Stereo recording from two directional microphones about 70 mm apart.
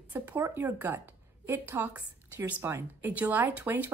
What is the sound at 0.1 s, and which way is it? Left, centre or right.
A woman's voice, right.